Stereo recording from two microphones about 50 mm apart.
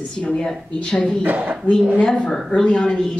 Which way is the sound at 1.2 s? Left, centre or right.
Right.